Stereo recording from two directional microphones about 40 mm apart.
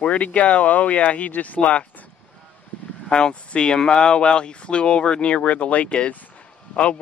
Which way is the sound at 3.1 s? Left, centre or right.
Left.